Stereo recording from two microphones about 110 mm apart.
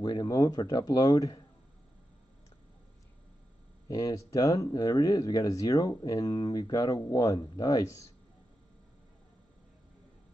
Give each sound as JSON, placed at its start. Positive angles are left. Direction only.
{"t": 0.0, "sound": "speech", "side_deg": 40}
{"t": 3.9, "sound": "speech", "side_deg": 35}